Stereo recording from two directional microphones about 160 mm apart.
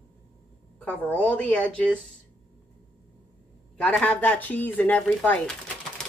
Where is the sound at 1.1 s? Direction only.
10° left (ahead or behind).